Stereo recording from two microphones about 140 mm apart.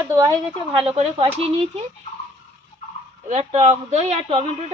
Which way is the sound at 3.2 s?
55° right (ahead or behind).